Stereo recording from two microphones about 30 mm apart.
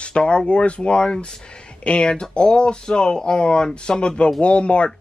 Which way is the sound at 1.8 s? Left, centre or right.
Left.